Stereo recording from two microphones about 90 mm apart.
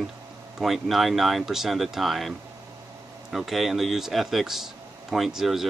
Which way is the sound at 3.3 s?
Centre (ahead or behind).